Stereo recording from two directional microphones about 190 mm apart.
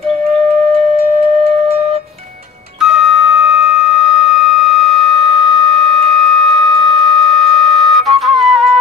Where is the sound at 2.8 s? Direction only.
Centre (ahead or behind).